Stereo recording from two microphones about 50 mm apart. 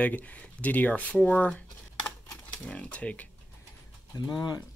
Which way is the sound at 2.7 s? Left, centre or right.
Left.